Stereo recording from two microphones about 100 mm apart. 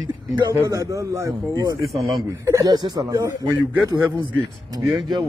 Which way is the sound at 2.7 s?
40° right (ahead or behind).